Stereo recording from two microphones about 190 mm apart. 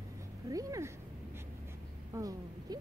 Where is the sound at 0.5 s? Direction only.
15° right (ahead or behind).